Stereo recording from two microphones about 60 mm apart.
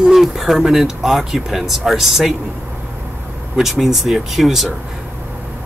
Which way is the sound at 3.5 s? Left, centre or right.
Centre.